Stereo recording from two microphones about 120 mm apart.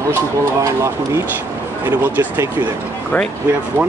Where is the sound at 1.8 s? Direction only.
15° right (ahead or behind).